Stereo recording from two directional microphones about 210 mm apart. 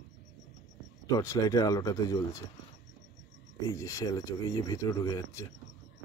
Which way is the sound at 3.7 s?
15° left (ahead or behind).